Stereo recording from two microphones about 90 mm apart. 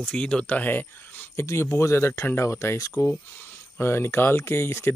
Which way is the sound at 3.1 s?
25° left (ahead or behind).